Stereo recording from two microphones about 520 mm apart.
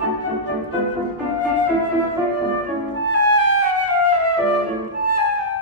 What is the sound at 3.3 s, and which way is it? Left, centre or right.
Music, left.